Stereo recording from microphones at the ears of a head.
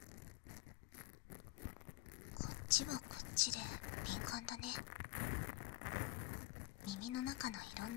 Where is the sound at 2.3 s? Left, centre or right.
Left.